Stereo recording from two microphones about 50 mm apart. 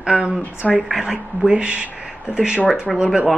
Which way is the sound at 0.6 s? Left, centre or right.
Centre.